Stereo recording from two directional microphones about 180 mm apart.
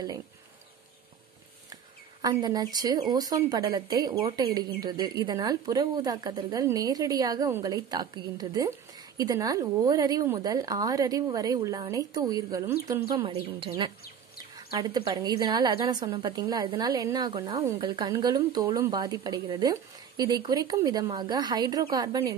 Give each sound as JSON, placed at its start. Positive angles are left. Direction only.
{"t": 2.2, "sound": "speech", "side_deg": -20}
{"t": 14.7, "sound": "speech", "side_deg": -20}